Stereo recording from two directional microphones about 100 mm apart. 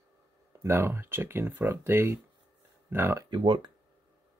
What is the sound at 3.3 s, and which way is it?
Speech, 55° right (ahead or behind).